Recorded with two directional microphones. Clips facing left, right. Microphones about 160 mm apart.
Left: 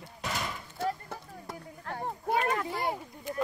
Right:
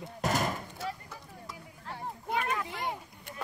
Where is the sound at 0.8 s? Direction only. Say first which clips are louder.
Left 10 dB; 50° left (ahead or behind).